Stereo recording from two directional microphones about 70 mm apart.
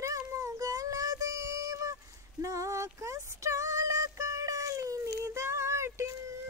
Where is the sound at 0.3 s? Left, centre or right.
Right.